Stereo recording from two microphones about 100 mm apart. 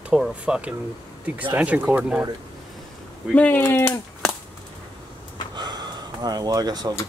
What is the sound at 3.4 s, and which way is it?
Speech, 15° left (ahead or behind).